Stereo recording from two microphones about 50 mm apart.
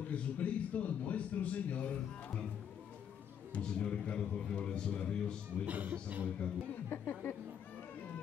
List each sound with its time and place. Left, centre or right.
0.1 s speech: left
3.6 s a man's voice: centre
5.7 s speech: right
6.9 s speech: left